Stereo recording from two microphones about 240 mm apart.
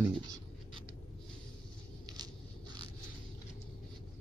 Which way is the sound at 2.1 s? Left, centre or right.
Centre.